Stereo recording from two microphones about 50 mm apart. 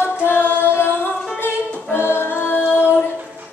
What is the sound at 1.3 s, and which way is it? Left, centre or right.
Singing, left.